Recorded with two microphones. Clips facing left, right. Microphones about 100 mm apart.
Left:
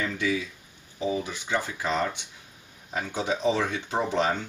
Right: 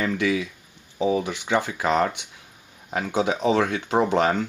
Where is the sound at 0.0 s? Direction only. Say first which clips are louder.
Right 5 dB; 70° right (ahead or behind).